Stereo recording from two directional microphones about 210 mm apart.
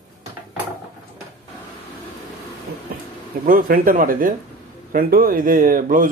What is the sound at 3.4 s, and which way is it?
Speech, 45° right (ahead or behind).